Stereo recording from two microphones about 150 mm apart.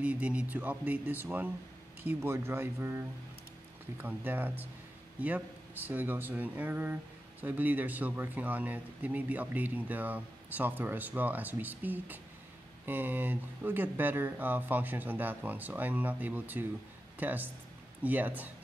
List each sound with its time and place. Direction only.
0.0 s speech: 10° right (ahead or behind)
5.9 s speech: 10° right (ahead or behind)